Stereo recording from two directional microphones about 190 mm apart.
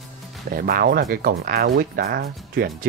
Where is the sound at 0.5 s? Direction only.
50° right (ahead or behind).